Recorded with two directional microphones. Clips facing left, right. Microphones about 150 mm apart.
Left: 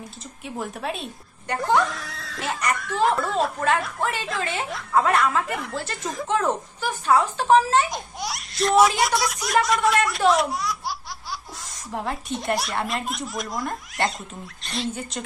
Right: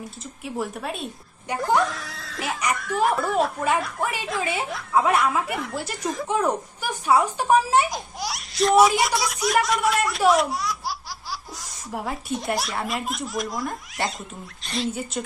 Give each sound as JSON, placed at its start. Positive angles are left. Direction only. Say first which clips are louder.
{"t": 0.6, "sound": "a woman's voice", "louder": "even", "side_deg": 0}
{"t": 7.9, "sound": "speech", "louder": "even", "side_deg": 0}
{"t": 14.6, "sound": "rodents", "louder": "right 2 dB", "side_deg": 0}
{"t": 14.9, "sound": "speech", "louder": "right 2 dB", "side_deg": -5}